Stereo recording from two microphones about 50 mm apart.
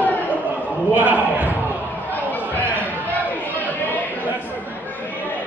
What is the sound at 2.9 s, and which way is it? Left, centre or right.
Chatter, left.